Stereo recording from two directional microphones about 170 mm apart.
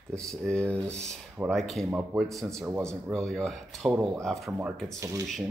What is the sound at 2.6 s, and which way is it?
Speech, 15° right (ahead or behind).